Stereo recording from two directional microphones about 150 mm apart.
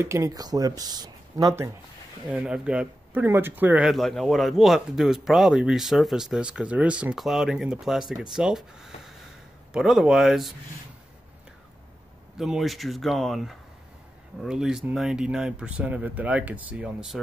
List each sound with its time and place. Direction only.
0.0 s speech: 20° right (ahead or behind)
2.2 s speech: 5° right (ahead or behind)
12.4 s speech: centre (ahead or behind)